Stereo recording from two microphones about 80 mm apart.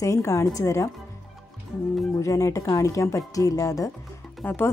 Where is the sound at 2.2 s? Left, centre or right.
Left.